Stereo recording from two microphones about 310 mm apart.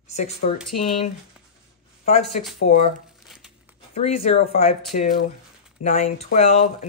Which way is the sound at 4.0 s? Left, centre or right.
Centre.